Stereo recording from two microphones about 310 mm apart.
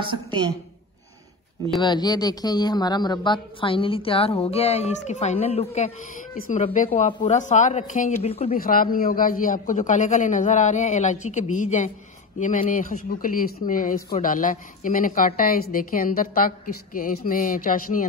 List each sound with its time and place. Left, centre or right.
1.8 s speech: centre